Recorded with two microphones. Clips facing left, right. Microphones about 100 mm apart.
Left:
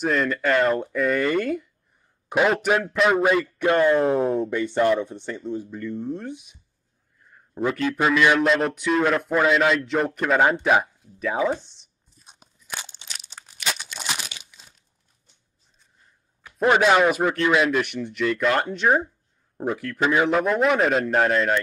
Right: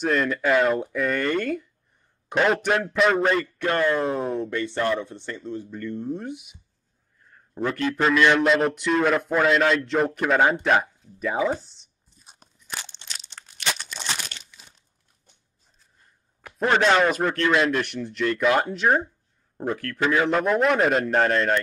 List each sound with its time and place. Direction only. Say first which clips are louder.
0.0 s a man's voice: even; centre (ahead or behind)
4.2 s a man's voice: left 4 dB; 5° left (ahead or behind)
7.3 s a man's voice: left 2 dB; 10° left (ahead or behind)
11.6 s crunch: even; centre (ahead or behind)
16.5 s a man's voice: left 2 dB; 5° left (ahead or behind)
20.2 s a man's voice: left 1 dB; centre (ahead or behind)